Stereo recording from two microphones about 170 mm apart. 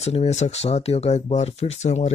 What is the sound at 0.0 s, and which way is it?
Speech, 40° left (ahead or behind).